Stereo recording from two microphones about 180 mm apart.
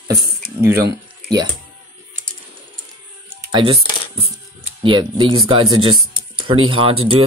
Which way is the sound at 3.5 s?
30° right (ahead or behind).